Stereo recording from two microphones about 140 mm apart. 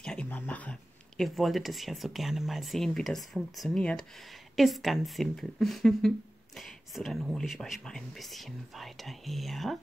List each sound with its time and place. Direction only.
0.0 s a woman's voice: 5° left (ahead or behind)